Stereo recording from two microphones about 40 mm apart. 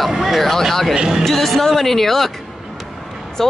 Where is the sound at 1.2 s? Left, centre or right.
Centre.